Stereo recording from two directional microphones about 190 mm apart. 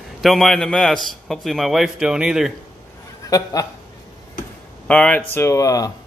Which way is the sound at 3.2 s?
20° left (ahead or behind).